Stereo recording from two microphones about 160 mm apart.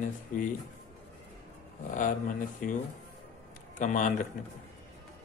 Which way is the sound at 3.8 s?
50° left (ahead or behind).